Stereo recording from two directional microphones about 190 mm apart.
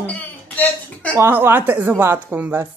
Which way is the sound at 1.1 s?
10° right (ahead or behind).